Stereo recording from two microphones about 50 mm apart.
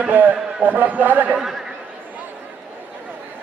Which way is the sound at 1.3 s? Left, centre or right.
Centre.